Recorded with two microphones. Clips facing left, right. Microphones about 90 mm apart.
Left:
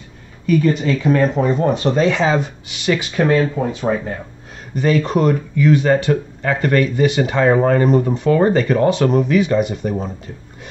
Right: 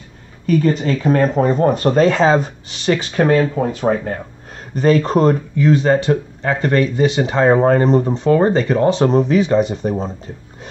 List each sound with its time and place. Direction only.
0.5 s speech: 35° right (ahead or behind)
3.8 s speech: 55° right (ahead or behind)
4.7 s speech: 40° right (ahead or behind)